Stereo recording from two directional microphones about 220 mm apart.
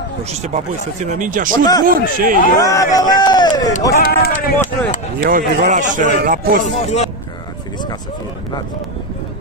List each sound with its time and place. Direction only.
0.3 s a man's voice: 30° right (ahead or behind)
1.5 s speech: 15° left (ahead or behind)
1.9 s a man's voice: 40° right (ahead or behind)
2.5 s speech: 15° left (ahead or behind)
3.9 s speech: 45° left (ahead or behind)
5.6 s a man's voice: 35° right (ahead or behind)
6.6 s speech: 30° left (ahead or behind)